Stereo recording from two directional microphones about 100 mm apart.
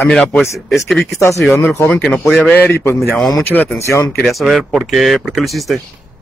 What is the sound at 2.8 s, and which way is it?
Speech, 25° left (ahead or behind).